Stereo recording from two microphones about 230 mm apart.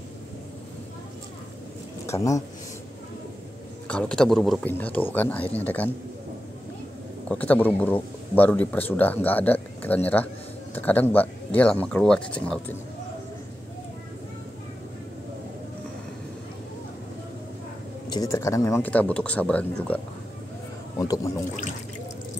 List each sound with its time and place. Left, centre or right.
2.0 s speech: centre
3.8 s speech: centre
7.2 s speech: centre
18.1 s speech: centre
21.0 s speech: centre